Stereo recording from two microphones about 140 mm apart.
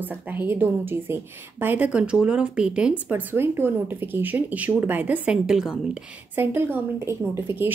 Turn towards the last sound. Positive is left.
turn(degrees=-15)  # may be behind; listen again after turning